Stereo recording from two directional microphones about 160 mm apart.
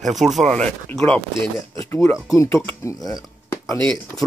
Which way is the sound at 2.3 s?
20° left (ahead or behind).